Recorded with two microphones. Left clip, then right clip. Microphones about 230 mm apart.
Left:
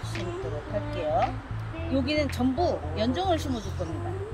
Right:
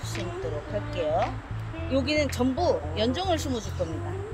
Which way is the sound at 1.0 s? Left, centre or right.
Centre.